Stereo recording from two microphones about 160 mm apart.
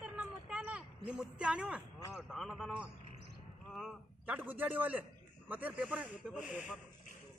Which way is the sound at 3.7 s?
5° right (ahead or behind).